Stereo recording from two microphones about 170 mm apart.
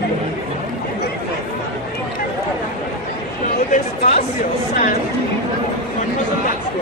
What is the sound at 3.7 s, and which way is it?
Chatter, 40° left (ahead or behind).